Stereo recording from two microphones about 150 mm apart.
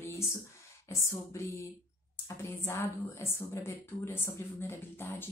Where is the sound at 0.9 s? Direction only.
20° left (ahead or behind).